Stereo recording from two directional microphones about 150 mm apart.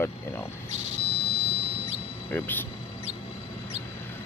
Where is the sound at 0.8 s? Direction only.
45° right (ahead or behind).